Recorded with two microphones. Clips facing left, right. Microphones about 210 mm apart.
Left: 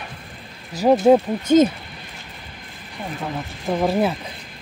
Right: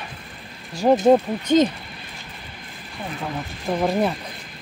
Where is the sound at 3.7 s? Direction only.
5° left (ahead or behind).